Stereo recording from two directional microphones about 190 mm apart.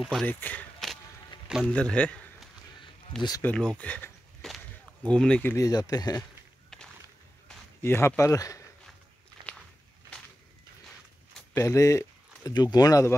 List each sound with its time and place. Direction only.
0.0 s a man's voice: centre (ahead or behind)
3.2 s speech: 20° left (ahead or behind)
3.4 s speech: 5° left (ahead or behind)
7.8 s speech: 15° left (ahead or behind)
11.5 s speech: 15° left (ahead or behind)